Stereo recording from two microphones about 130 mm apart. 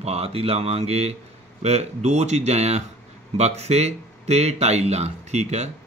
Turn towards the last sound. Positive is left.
turn(degrees=-60)  # may be behind; listen again after turning